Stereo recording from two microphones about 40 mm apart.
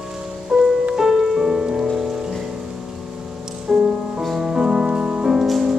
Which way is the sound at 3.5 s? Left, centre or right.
Right.